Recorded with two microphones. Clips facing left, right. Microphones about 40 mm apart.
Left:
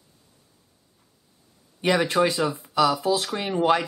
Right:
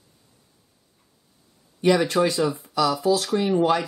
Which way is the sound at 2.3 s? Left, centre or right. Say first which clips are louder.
Right 2 dB; centre.